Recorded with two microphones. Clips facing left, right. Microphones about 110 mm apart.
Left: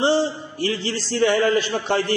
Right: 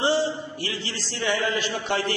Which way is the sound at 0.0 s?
30° left (ahead or behind).